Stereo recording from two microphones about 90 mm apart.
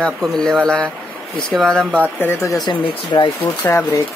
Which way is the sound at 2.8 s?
60° left (ahead or behind).